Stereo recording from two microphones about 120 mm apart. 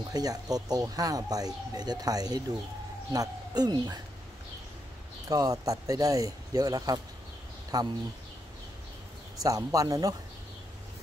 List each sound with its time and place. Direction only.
0.1 s speech: 30° right (ahead or behind)
5.3 s speech: 30° right (ahead or behind)
9.4 s speech: 30° right (ahead or behind)